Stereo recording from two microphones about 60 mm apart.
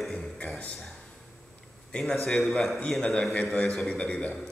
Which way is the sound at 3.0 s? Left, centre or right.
Centre.